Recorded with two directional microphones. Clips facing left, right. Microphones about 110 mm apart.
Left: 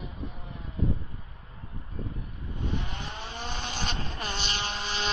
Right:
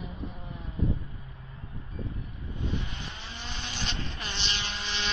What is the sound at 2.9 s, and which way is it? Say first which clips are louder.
Vehicle: left 4 dB; 45° left (ahead or behind).